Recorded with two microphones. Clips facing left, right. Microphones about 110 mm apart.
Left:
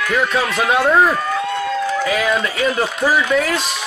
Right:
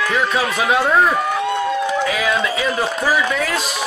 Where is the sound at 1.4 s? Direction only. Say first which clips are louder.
Right 1 dB; 20° right (ahead or behind).